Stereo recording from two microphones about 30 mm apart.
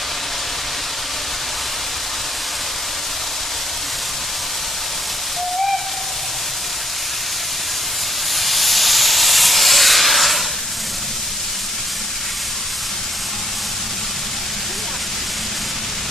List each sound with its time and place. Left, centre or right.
8.4 s steam: centre